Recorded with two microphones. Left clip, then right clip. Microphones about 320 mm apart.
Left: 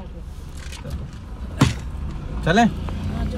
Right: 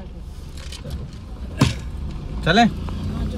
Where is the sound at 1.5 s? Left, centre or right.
Centre.